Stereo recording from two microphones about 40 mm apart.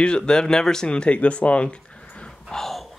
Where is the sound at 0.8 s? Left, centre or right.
Left.